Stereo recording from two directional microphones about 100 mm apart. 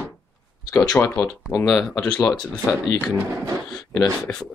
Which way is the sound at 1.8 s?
5° left (ahead or behind).